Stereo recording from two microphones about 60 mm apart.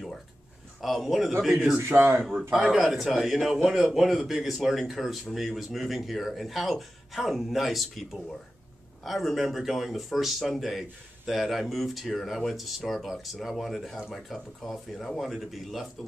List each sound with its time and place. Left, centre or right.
0.7 s speech: centre
1.9 s speech: right
2.5 s speech: centre